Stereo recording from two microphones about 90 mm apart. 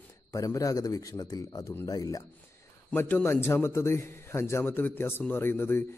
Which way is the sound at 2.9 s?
25° left (ahead or behind).